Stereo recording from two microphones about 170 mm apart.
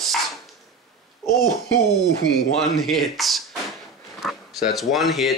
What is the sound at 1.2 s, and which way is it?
Speech, 20° left (ahead or behind).